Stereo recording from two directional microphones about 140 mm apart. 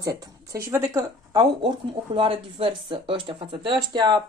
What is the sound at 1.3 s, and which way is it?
Speech, 35° right (ahead or behind).